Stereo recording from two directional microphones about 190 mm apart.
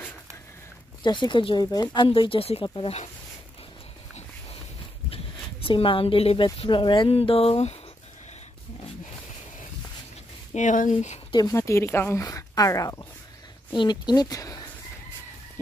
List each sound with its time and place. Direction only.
1.0 s speech: 25° left (ahead or behind)
5.1 s speech: 30° left (ahead or behind)
10.5 s speech: 40° left (ahead or behind)
11.3 s speech: 15° left (ahead or behind)